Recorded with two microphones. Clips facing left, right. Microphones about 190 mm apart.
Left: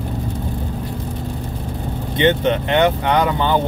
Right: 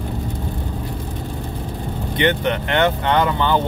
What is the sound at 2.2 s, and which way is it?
Speech, 20° left (ahead or behind).